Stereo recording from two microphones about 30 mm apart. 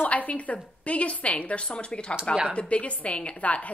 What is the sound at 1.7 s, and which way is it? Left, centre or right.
A woman's voice, left.